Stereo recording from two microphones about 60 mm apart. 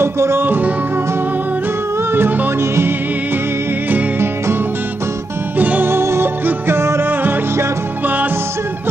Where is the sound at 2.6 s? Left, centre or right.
Right.